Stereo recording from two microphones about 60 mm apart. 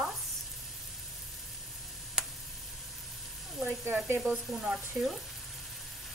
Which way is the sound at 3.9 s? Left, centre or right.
Right.